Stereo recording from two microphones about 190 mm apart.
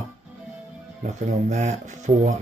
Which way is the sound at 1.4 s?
40° right (ahead or behind).